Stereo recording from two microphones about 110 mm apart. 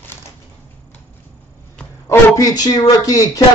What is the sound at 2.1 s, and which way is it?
Speech, 30° left (ahead or behind).